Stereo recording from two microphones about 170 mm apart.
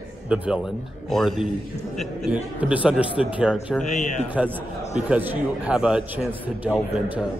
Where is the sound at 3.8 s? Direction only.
45° left (ahead or behind).